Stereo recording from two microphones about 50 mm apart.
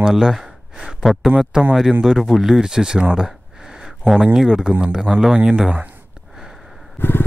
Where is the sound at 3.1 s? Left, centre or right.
Centre.